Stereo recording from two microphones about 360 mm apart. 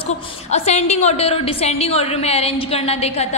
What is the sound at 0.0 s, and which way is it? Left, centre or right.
A woman's voice, centre.